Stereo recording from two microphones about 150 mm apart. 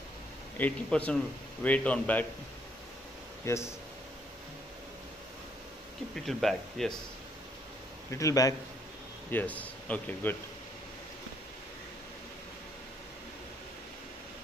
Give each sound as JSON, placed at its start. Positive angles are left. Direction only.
{"t": 0.6, "sound": "speech", "side_deg": 10}
{"t": 3.4, "sound": "a man's voice", "side_deg": 20}
{"t": 6.1, "sound": "speech", "side_deg": 0}
{"t": 8.1, "sound": "a man's voice", "side_deg": 20}
{"t": 9.3, "sound": "speech", "side_deg": 10}